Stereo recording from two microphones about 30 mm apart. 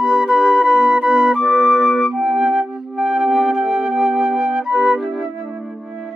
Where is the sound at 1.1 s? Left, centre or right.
Centre.